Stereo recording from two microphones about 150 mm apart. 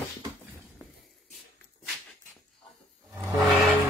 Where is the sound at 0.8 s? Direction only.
Centre (ahead or behind).